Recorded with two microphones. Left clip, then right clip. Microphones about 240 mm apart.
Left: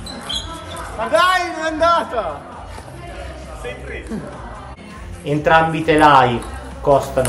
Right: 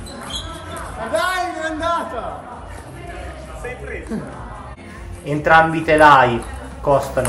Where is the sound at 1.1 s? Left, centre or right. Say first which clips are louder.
Left 5 dB; left.